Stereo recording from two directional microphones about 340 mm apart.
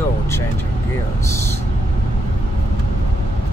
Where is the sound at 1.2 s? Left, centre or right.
Centre.